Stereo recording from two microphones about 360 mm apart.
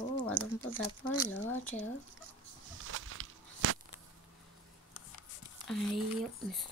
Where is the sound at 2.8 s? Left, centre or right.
Right.